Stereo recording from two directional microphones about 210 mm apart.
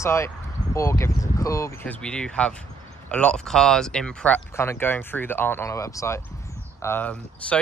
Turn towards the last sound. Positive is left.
turn(degrees=10)  # may be behind; listen again after turning